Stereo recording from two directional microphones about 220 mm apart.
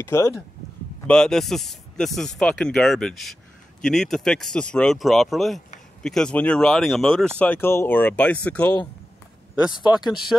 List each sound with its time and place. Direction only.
0.0 s speech: 15° left (ahead or behind)
1.0 s speech: 5° left (ahead or behind)
9.9 s speech: 20° left (ahead or behind)